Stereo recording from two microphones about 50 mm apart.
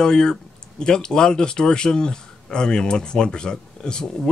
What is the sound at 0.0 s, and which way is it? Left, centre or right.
Speech, centre.